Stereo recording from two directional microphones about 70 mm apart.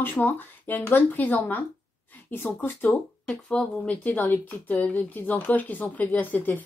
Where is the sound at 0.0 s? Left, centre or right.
Left.